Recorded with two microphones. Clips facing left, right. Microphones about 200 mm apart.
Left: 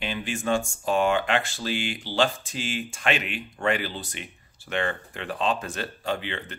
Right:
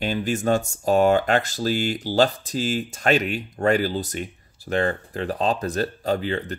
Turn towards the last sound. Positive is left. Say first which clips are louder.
# right 6 dB
turn(degrees=-40)  # may be behind; listen again after turning